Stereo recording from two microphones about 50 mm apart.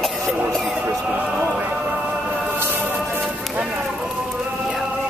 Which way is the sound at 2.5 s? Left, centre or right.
Right.